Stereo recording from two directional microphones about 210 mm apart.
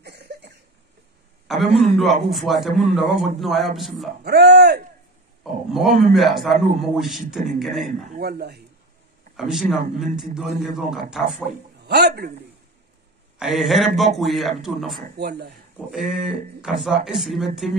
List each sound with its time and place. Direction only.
0.0 s cough: 55° right (ahead or behind)
1.8 s a man's voice: centre (ahead or behind)
4.2 s speech: 50° right (ahead or behind)
5.4 s a man's voice: centre (ahead or behind)
8.2 s speech: 50° right (ahead or behind)
9.4 s a man's voice: centre (ahead or behind)
11.8 s a man's voice: 50° right (ahead or behind)
13.4 s a man's voice: centre (ahead or behind)
15.1 s speech: 50° right (ahead or behind)
15.9 s a man's voice: centre (ahead or behind)